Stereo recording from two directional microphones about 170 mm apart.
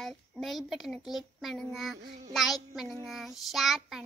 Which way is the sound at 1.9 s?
45° right (ahead or behind).